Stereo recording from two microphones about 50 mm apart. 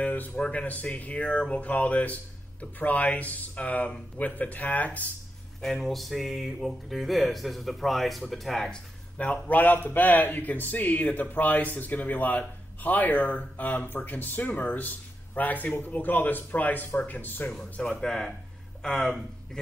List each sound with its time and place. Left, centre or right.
0.0 s a sound: left
0.4 s speech: left
5.6 s speech: centre
9.2 s speech: left
17.8 s speech: centre